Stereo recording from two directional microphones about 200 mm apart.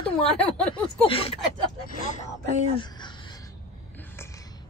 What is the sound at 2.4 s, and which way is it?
Speech, 25° left (ahead or behind).